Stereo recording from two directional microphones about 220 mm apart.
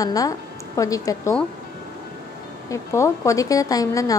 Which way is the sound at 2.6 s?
15° left (ahead or behind).